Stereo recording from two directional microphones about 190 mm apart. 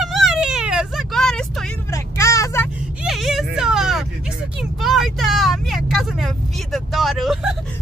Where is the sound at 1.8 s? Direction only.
15° left (ahead or behind).